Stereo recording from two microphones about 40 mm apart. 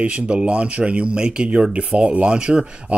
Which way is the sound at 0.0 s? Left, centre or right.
Right.